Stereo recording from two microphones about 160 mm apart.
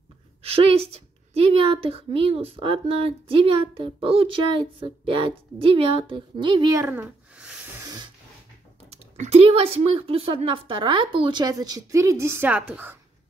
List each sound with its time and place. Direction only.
0.4 s a woman's voice: 40° right (ahead or behind); by 7.7 s 5° right (ahead or behind)
7.8 s a sound: 25° right (ahead or behind)
8.9 s speech: 45° right (ahead or behind); by 12.9 s 10° right (ahead or behind)